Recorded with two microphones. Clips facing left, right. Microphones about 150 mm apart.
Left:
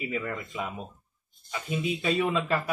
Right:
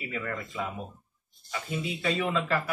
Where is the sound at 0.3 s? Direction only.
20° left (ahead or behind).